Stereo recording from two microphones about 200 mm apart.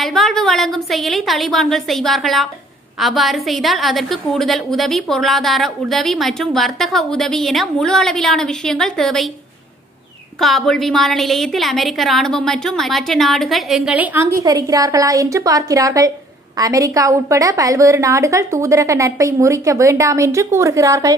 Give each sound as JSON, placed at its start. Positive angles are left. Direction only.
{"t": 0.0, "sound": "a woman's voice", "side_deg": 0}
{"t": 10.4, "sound": "a woman's voice", "side_deg": 0}